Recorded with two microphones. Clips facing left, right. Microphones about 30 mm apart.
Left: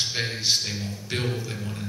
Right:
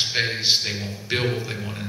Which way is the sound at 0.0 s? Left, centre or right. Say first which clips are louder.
Right 4 dB; right.